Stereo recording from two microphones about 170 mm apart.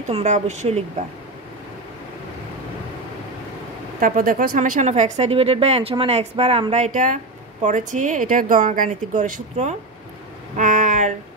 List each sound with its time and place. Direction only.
0.1 s speech: 40° right (ahead or behind)
4.0 s speech: 55° right (ahead or behind)
10.5 s a sound: 50° right (ahead or behind)